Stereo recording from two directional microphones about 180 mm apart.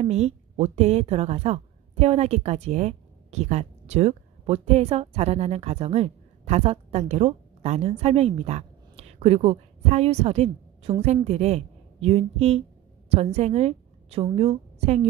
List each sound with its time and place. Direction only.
0.0 s a woman's voice: 35° right (ahead or behind)